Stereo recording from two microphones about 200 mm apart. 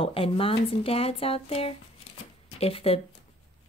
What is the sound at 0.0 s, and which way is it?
Speech, 25° left (ahead or behind).